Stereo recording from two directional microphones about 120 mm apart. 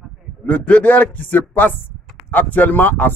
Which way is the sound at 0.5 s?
10° left (ahead or behind).